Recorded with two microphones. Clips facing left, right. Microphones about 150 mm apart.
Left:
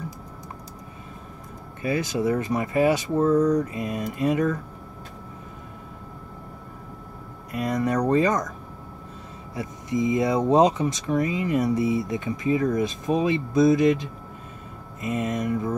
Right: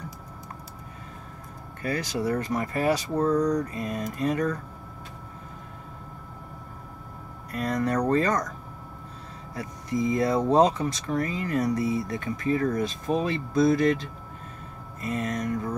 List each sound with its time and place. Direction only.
1.8 s speech: 20° left (ahead or behind)
3.2 s speech: centre (ahead or behind)
3.6 s speech: 20° left (ahead or behind)
7.5 s speech: 15° left (ahead or behind)
9.5 s speech: 20° left (ahead or behind)
15.0 s speech: 20° left (ahead or behind)